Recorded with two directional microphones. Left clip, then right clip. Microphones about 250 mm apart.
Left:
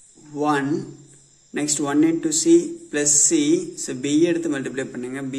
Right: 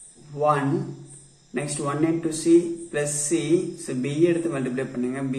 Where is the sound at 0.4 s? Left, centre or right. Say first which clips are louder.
Even; left.